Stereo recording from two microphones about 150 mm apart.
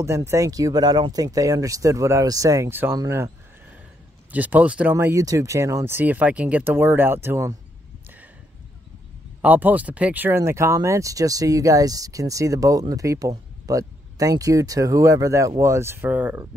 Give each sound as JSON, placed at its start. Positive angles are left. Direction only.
{"t": 0.0, "sound": "speech", "side_deg": -20}
{"t": 4.3, "sound": "speech", "side_deg": -10}
{"t": 9.4, "sound": "speech", "side_deg": -10}